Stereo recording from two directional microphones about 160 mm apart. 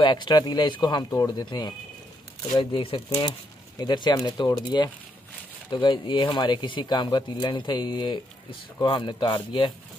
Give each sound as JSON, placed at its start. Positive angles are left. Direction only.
{"t": 0.0, "sound": "a man's voice", "side_deg": 25}